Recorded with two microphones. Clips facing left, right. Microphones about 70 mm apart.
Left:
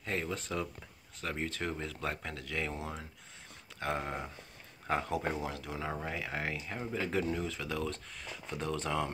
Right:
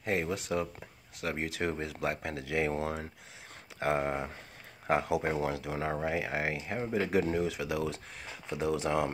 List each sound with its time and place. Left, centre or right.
0.0 s speech: centre
1.4 s speech: centre